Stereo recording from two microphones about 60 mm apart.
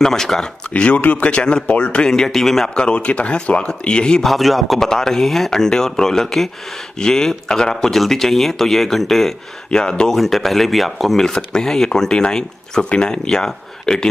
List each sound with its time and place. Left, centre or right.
0.0 s speech: centre
0.7 s speech: left
4.3 s a man's voice: centre
10.1 s speech: centre